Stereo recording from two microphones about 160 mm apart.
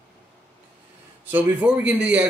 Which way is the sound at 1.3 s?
10° right (ahead or behind).